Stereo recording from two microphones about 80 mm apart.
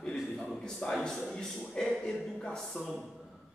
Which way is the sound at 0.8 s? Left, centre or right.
Centre.